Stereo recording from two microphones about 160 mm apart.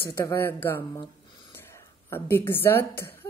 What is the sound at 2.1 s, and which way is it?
Speech, 15° left (ahead or behind).